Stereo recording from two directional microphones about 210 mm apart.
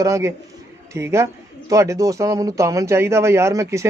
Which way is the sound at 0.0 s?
15° right (ahead or behind).